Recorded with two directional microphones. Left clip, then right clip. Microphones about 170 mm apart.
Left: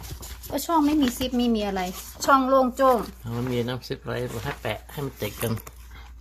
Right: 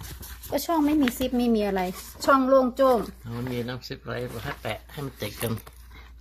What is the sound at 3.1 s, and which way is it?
Speech, 20° left (ahead or behind).